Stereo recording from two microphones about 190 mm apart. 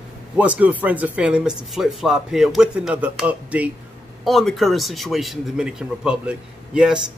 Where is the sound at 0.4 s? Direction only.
5° right (ahead or behind).